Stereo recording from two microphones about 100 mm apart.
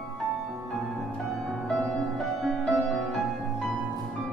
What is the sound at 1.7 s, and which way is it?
Music, 5° left (ahead or behind).